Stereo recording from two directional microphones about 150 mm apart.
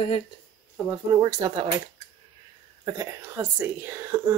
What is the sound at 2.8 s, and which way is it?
Speech, 20° right (ahead or behind).